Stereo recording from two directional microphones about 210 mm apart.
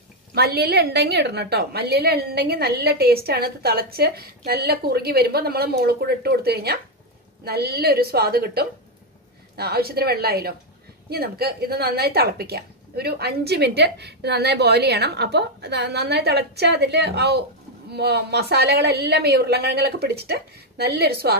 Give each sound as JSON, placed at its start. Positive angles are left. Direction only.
{"t": 0.3, "sound": "a woman's voice", "side_deg": -50}